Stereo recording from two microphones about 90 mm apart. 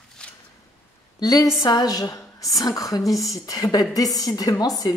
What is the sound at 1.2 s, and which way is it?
A woman's voice, 40° left (ahead or behind).